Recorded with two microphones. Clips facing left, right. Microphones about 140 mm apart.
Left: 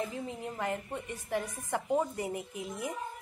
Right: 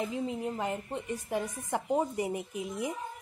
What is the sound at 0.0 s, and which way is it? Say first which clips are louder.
A woman's voice: right 4 dB; 20° right (ahead or behind).